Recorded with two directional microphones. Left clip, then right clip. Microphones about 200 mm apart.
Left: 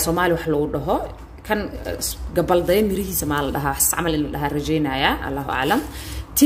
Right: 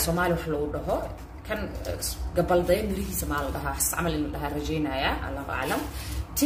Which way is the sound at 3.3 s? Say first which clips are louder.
Left 7 dB; 45° left (ahead or behind).